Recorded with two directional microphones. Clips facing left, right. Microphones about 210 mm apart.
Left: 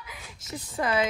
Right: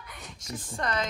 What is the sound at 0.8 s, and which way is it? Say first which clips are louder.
Speech: left 5 dB; 5° left (ahead or behind).